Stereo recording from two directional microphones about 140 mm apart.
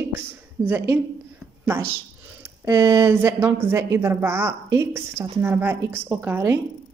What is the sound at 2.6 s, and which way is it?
Speech, 20° right (ahead or behind).